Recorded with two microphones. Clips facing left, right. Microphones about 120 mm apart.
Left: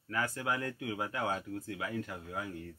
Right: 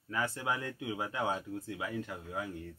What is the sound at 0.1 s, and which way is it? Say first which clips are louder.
Speech: even; 25° right (ahead or behind).